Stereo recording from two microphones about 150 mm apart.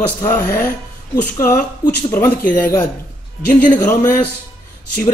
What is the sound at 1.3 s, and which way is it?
Speech, 20° left (ahead or behind).